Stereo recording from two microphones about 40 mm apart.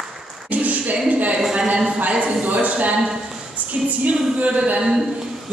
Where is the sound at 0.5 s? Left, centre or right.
Right.